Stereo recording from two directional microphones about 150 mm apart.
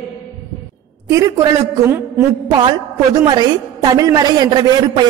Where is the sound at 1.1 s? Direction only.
20° right (ahead or behind).